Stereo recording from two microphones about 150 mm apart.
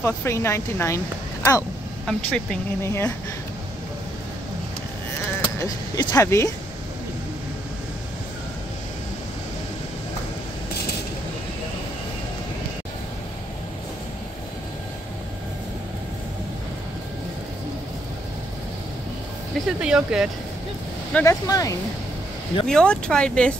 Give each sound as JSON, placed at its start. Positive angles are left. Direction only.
{"t": 0.0, "sound": "speech", "side_deg": 15}
{"t": 2.0, "sound": "speech", "side_deg": 5}
{"t": 2.8, "sound": "speech", "side_deg": 15}
{"t": 5.6, "sound": "speech", "side_deg": 20}
{"t": 19.8, "sound": "speech", "side_deg": -5}
{"t": 21.1, "sound": "speech", "side_deg": 20}
{"t": 22.7, "sound": "speech", "side_deg": 5}